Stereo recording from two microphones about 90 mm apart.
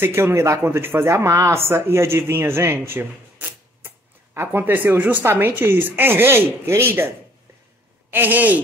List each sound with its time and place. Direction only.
0.0 s speech: 30° right (ahead or behind)
8.1 s speech: 20° right (ahead or behind)